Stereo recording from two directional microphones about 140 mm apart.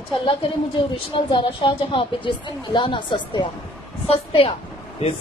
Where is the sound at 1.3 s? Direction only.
35° left (ahead or behind).